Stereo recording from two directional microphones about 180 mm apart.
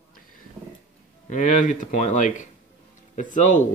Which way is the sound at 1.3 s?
45° left (ahead or behind).